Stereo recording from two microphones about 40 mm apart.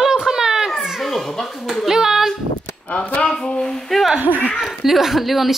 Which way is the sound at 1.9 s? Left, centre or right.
Centre.